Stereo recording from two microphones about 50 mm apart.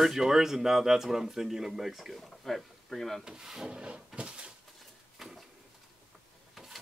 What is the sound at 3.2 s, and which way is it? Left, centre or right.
Speech, centre.